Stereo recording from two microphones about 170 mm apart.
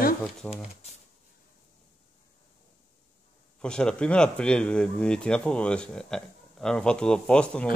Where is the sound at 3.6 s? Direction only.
5° left (ahead or behind).